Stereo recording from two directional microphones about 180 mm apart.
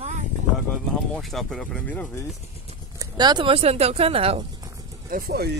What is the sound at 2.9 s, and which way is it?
Speech, 25° right (ahead or behind).